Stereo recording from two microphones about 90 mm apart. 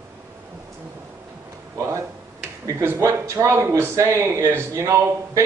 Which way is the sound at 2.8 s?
30° right (ahead or behind).